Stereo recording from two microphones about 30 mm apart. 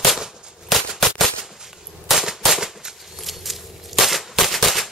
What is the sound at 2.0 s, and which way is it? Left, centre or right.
Firecracker, centre.